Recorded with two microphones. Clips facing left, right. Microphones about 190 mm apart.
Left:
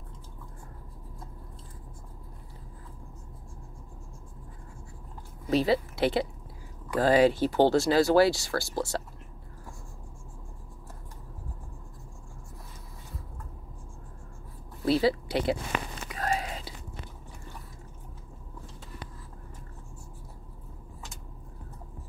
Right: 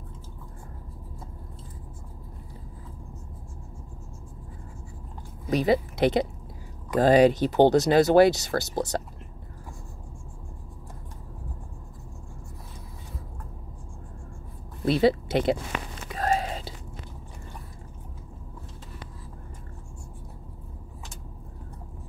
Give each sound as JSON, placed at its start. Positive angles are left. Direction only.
{"t": 5.5, "sound": "speech", "side_deg": -15}
{"t": 14.9, "sound": "speech", "side_deg": -20}
{"t": 16.2, "sound": "whispering", "side_deg": -30}